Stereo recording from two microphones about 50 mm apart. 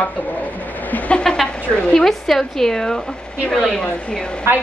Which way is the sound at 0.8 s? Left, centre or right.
Left.